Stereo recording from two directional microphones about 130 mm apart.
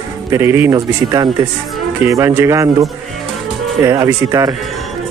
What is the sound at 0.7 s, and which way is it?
Speech, 30° right (ahead or behind).